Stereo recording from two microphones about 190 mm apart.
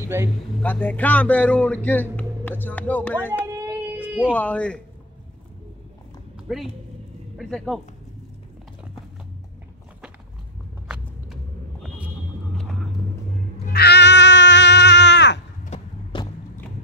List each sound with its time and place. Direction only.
0.0 s speech: 15° right (ahead or behind)
0.6 s speech: 10° left (ahead or behind)
6.5 s speech: centre (ahead or behind)
10.9 s walk: 5° right (ahead or behind)
13.7 s cat: 60° left (ahead or behind)
16.1 s a sound: 25° left (ahead or behind)